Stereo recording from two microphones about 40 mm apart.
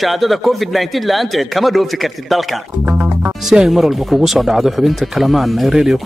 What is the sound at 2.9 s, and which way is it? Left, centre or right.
Speech, right.